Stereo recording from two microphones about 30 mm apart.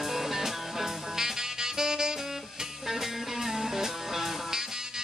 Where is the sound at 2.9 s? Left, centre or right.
Centre.